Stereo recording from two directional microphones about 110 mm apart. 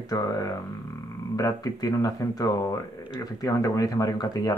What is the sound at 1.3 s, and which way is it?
Speech, 35° left (ahead or behind).